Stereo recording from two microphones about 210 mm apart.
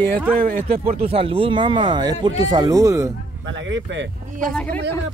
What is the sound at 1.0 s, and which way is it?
A man's voice, 25° right (ahead or behind).